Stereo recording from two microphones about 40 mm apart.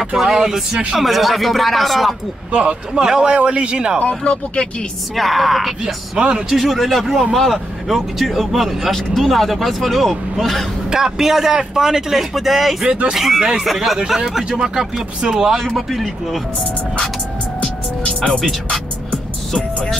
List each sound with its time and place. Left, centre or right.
0.0 s a man's voice: centre
0.9 s speech: centre
2.5 s speech: right
4.1 s speech: left
5.1 s speech: centre
6.1 s speech: right
6.5 s speech: centre
7.9 s speech: centre
10.9 s a man's voice: centre
12.8 s speech: right
13.1 s a man's voice: centre
15.6 s speech: centre
17.6 s music: left